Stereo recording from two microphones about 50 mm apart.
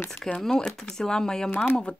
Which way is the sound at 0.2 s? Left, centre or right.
Centre.